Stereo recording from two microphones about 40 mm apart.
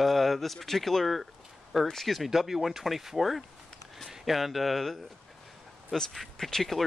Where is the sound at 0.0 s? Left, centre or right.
Centre.